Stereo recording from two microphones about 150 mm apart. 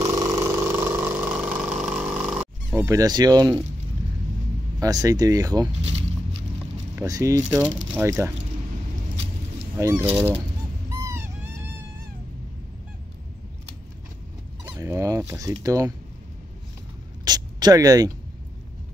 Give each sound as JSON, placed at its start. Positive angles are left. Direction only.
{"t": 0.0, "sound": "engine", "side_deg": -25}
{"t": 2.8, "sound": "speech", "side_deg": -25}
{"t": 4.7, "sound": "speech", "side_deg": -25}
{"t": 5.8, "sound": "speech", "side_deg": -45}
{"t": 7.0, "sound": "speech", "side_deg": -20}
{"t": 7.5, "sound": "speech", "side_deg": -10}
{"t": 9.8, "sound": "speech", "side_deg": -20}
{"t": 10.9, "sound": "a sound", "side_deg": -20}
{"t": 14.6, "sound": "dog", "side_deg": -20}
{"t": 17.2, "sound": "a sound", "side_deg": -25}